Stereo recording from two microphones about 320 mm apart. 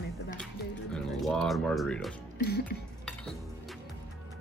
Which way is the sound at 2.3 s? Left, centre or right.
Left.